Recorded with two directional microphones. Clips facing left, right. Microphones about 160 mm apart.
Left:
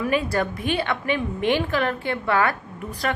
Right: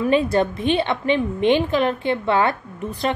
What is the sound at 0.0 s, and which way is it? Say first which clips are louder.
A woman's voice: right 5 dB; 25° right (ahead or behind).